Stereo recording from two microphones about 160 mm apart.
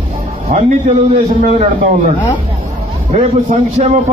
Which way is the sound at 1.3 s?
50° right (ahead or behind).